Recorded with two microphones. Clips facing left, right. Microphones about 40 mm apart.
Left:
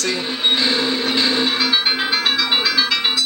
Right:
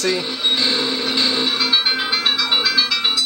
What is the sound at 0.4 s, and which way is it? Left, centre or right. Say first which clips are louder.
Music: left 1 dB; centre.